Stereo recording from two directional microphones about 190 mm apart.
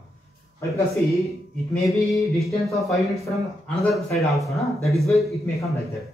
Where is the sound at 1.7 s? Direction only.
Centre (ahead or behind).